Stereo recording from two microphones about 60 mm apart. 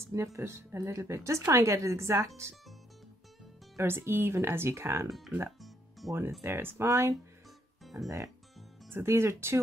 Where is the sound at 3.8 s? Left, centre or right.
Right.